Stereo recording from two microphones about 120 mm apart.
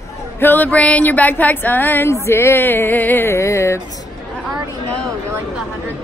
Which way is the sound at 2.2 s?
20° left (ahead or behind).